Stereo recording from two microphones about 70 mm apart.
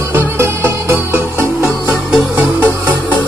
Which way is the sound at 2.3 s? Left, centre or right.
Right.